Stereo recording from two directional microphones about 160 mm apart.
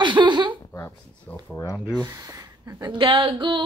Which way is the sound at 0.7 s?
15° left (ahead or behind).